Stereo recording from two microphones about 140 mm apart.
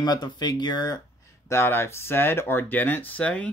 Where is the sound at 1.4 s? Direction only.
20° left (ahead or behind).